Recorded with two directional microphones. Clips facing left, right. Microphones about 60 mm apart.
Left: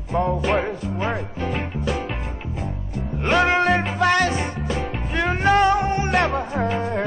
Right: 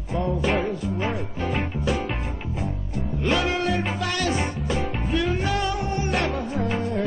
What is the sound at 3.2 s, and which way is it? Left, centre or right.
Music, left.